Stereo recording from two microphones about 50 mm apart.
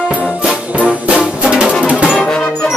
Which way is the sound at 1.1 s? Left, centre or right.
Right.